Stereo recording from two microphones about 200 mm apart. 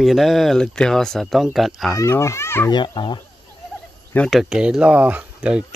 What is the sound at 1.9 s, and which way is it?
Speech, 15° left (ahead or behind).